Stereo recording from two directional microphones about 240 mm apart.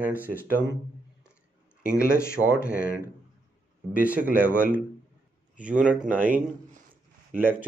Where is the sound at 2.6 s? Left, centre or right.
Left.